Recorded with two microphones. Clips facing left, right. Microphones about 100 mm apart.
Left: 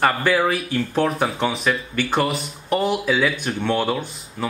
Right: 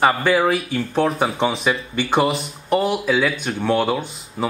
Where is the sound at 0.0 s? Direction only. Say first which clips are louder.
Right 2 dB; 5° right (ahead or behind).